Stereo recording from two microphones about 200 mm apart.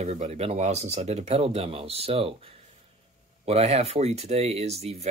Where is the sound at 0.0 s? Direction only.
35° right (ahead or behind).